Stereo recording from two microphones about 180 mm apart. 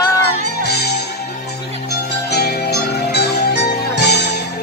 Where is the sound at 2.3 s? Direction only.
60° left (ahead or behind).